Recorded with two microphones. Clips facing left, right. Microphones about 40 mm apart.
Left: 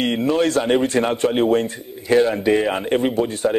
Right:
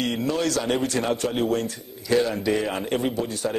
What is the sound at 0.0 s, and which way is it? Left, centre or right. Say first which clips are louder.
A man's voice: left 6 dB; left.